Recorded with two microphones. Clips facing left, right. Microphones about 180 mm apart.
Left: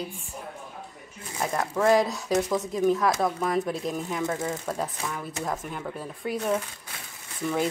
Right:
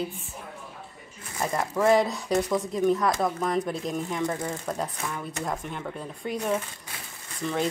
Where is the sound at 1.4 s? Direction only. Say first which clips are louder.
Even; centre (ahead or behind).